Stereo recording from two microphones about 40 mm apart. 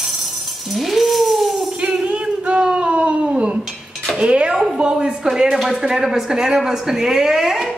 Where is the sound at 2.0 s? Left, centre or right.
Right.